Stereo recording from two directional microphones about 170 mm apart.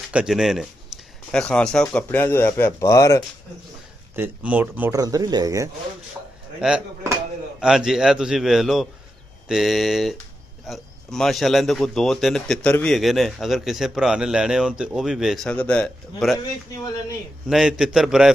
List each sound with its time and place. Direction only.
0.1 s speech: 5° right (ahead or behind); by 3.3 s 20° left (ahead or behind)
4.1 s speech: 10° right (ahead or behind)
5.0 s speech: 20° right (ahead or behind)
6.6 s speech: 5° right (ahead or behind)
17.5 s speech: 5° right (ahead or behind)